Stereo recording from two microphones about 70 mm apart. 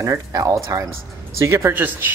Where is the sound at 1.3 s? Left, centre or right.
Right.